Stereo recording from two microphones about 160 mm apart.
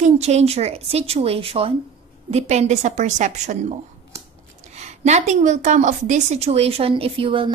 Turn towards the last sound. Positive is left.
turn(degrees=-35)  # may be behind; listen again after turning